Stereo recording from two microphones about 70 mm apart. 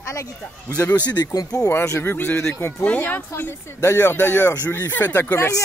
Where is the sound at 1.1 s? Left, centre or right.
Left.